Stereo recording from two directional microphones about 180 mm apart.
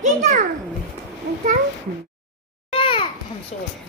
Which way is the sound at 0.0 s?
40° right (ahead or behind).